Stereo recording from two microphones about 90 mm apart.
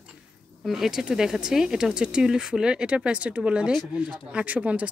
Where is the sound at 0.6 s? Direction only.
5° right (ahead or behind).